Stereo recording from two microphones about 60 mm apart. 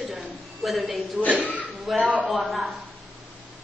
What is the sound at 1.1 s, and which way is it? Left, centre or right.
Speech, right.